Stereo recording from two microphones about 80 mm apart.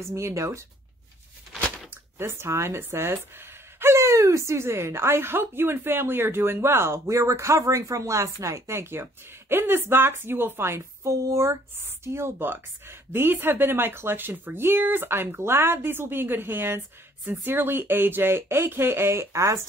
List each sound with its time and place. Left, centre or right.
0.0 s a woman's voice: right
2.1 s a woman's voice: right